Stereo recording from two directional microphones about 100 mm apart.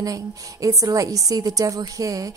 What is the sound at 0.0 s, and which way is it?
A woman's voice, 35° right (ahead or behind).